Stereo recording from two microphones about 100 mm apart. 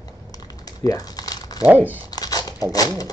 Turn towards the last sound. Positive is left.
turn(degrees=40)  # may be behind; listen again after turning